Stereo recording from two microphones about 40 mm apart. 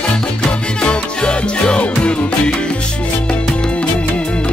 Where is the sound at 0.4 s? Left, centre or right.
Left.